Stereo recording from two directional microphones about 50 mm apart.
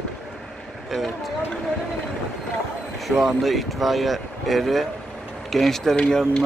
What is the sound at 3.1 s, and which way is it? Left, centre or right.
Speech, centre.